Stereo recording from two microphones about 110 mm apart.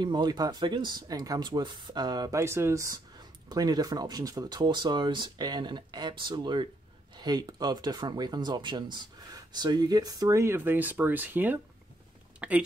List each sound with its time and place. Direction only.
0.0 s speech: 40° right (ahead or behind)
2.3 s speech: 25° right (ahead or behind)